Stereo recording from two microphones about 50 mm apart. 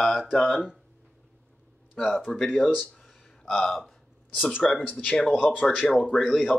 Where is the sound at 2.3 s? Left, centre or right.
Centre.